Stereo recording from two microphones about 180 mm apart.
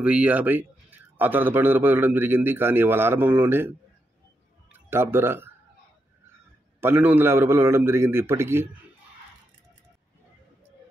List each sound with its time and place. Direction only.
0.0 s speech: 5° right (ahead or behind)
6.8 s speech: 10° right (ahead or behind)